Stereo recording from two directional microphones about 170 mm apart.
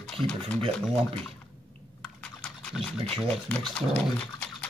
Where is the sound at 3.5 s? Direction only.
5° left (ahead or behind).